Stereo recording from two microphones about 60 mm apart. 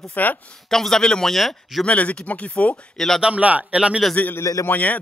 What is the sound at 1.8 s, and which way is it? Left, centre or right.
Speech, left.